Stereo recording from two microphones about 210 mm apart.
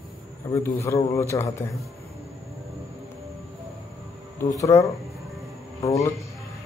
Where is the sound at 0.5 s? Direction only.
15° left (ahead or behind).